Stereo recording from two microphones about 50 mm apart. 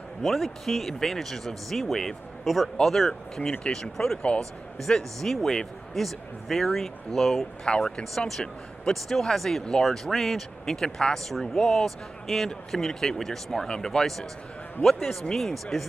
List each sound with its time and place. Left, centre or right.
0.2 s speech: centre
7.6 s speech: centre